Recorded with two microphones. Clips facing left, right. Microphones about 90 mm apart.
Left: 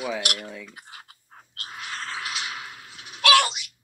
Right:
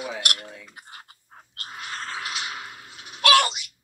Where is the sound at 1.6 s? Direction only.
Centre (ahead or behind).